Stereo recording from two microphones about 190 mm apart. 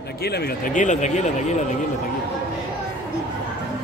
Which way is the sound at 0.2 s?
55° left (ahead or behind).